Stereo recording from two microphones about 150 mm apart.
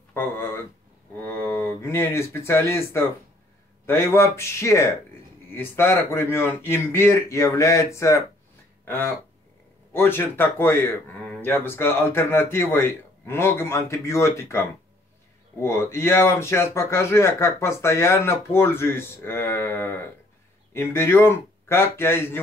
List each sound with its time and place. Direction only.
0.1 s speech: 15° left (ahead or behind)